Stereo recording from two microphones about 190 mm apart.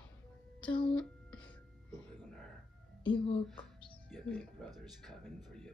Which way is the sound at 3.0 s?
25° left (ahead or behind).